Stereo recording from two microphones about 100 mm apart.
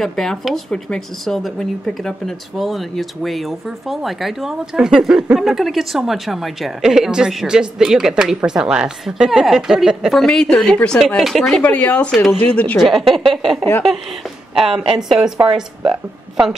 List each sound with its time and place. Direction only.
0.0 s speech: 5° left (ahead or behind)
11.6 s speech: 15° left (ahead or behind)
12.8 s speech: centre (ahead or behind)
14.9 s a woman's voice: 5° right (ahead or behind)